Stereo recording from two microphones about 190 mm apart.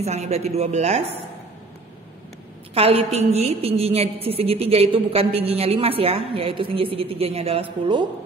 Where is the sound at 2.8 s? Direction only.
30° right (ahead or behind).